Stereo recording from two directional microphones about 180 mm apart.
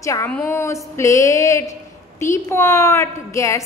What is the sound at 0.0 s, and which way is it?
A woman's voice, 15° left (ahead or behind).